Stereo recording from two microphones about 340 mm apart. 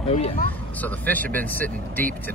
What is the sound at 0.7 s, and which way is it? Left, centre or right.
Speech, centre.